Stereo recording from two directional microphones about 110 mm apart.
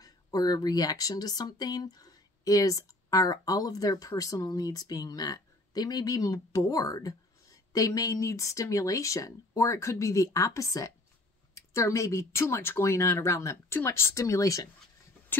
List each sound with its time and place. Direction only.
0.0 s speech: 35° left (ahead or behind)